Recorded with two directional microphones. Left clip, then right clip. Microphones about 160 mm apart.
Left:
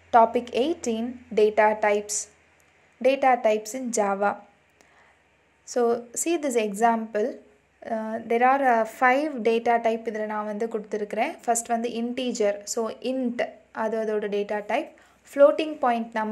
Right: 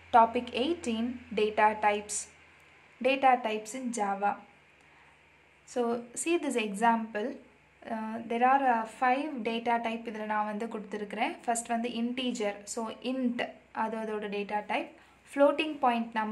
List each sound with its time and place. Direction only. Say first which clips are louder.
0.1 s a woman's voice: left 5 dB; 25° left (ahead or behind); by 4.4 s 45° left (ahead or behind)
5.7 s a woman's voice: left 8 dB; 30° left (ahead or behind)
9.0 s a woman's voice: left 7 dB; 50° left (ahead or behind)
10.1 s a woman's voice: left 3 dB; 25° left (ahead or behind)